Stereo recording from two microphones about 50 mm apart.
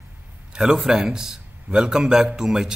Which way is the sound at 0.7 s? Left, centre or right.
Centre.